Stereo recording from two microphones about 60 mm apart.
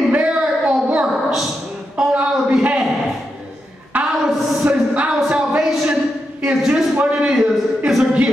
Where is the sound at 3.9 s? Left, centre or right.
Right.